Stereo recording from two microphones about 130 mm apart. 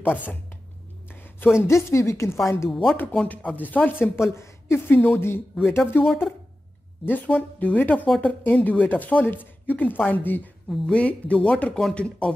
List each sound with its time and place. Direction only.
0.0 s speech: 15° left (ahead or behind)
1.1 s a sound: 15° left (ahead or behind)
1.6 s speech: 20° left (ahead or behind)
2.7 s speech: centre (ahead or behind)
3.0 s speech: 10° left (ahead or behind)
6.0 s speech: 5° right (ahead or behind)
7.1 s speech: 15° left (ahead or behind)